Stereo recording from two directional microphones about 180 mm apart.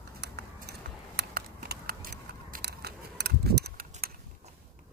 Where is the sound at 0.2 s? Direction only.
65° right (ahead or behind).